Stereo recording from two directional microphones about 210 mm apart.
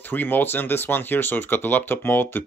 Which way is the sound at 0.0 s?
10° left (ahead or behind).